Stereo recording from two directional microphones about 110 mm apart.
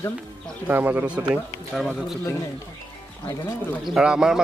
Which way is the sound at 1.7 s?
Centre (ahead or behind).